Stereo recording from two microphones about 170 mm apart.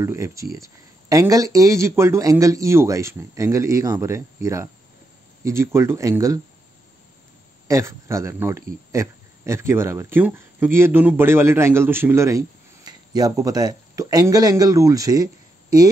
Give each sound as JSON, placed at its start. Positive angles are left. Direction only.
{"t": 0.0, "sound": "speech", "side_deg": -15}
{"t": 7.6, "sound": "speech", "side_deg": -15}